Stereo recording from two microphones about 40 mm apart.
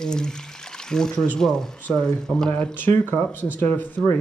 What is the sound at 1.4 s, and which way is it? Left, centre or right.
Speech, centre.